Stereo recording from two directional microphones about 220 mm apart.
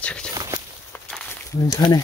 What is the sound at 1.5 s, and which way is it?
Speech, 20° left (ahead or behind).